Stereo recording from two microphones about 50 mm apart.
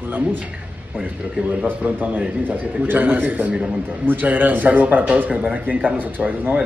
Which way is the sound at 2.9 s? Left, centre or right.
Right.